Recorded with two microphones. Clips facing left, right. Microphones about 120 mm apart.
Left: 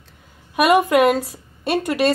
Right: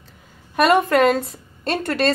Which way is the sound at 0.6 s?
10° left (ahead or behind).